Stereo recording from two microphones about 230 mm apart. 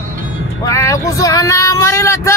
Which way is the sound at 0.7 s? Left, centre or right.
Centre.